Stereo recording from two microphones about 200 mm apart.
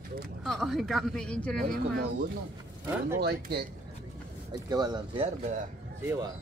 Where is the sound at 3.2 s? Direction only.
55° right (ahead or behind).